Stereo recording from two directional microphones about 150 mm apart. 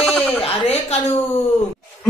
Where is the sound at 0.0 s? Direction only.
Centre (ahead or behind).